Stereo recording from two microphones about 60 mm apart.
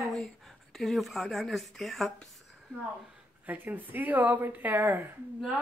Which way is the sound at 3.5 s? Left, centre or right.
Right.